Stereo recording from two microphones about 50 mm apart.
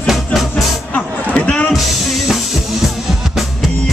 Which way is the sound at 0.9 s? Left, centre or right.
Left.